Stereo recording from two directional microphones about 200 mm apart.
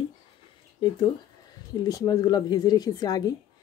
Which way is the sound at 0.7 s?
20° left (ahead or behind).